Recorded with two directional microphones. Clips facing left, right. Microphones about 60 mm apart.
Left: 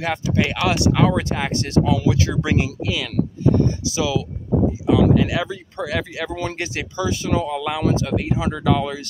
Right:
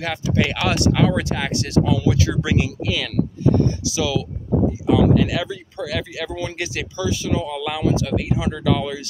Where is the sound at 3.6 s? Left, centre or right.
Left.